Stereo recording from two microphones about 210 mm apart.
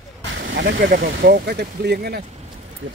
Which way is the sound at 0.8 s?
45° right (ahead or behind).